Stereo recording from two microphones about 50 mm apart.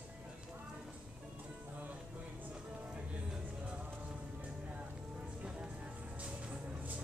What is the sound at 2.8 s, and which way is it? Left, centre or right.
Music, centre.